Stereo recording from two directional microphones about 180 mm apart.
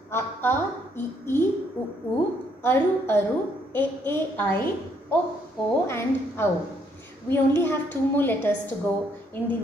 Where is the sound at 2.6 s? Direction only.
15° left (ahead or behind).